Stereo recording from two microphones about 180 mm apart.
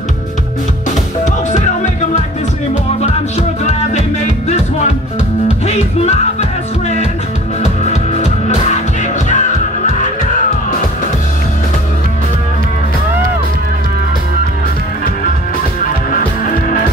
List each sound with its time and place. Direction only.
3.0 s music: 40° left (ahead or behind)
7.6 s music: 40° left (ahead or behind)